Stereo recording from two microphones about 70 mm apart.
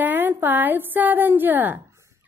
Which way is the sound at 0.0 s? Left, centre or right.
Right.